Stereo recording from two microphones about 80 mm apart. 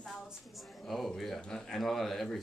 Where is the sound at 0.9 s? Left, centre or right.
Centre.